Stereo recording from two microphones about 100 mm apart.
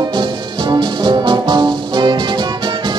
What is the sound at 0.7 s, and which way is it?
Music, 50° right (ahead or behind).